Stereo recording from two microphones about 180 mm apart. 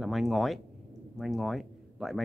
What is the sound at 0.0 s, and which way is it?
Speech, centre (ahead or behind).